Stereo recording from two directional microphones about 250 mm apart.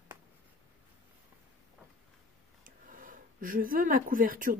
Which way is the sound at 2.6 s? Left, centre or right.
Right.